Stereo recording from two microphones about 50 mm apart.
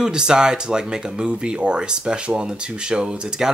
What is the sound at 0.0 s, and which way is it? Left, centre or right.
Speech, centre.